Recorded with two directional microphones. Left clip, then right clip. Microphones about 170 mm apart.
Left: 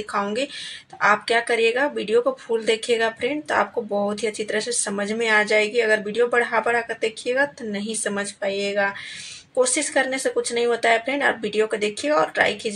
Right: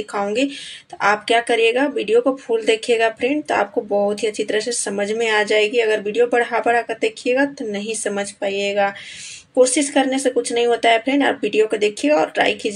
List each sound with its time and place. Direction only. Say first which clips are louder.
0.1 s speech: right 4 dB; 20° right (ahead or behind)